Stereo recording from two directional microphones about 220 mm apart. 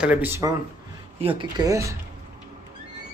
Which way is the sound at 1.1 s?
25° right (ahead or behind).